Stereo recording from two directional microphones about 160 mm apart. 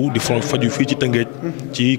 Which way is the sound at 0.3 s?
15° left (ahead or behind).